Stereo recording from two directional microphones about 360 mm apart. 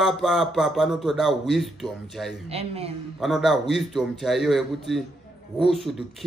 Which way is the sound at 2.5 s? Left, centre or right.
Centre.